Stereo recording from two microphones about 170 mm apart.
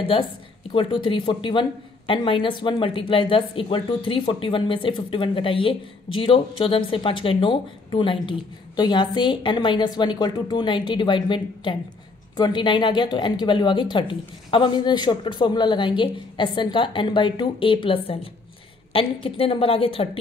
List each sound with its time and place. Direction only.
0.0 s a woman's voice: 30° left (ahead or behind)